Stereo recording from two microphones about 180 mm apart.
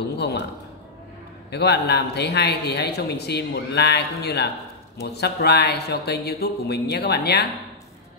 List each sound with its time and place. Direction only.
1.5 s speech: 65° left (ahead or behind)